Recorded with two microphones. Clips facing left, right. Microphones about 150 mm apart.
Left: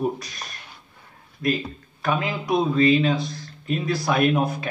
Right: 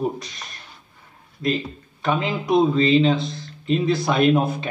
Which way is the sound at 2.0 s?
25° right (ahead or behind).